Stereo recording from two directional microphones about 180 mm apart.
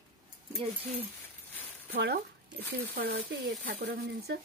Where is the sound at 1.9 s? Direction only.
65° right (ahead or behind).